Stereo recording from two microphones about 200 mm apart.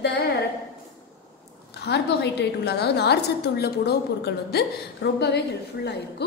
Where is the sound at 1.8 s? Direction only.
55° left (ahead or behind).